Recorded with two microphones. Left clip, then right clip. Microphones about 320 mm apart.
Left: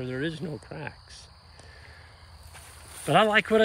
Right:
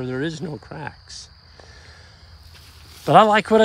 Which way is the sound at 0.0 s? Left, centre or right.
Centre.